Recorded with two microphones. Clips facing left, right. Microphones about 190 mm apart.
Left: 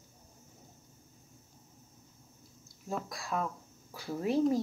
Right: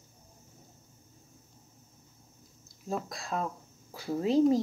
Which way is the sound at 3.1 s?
25° right (ahead or behind).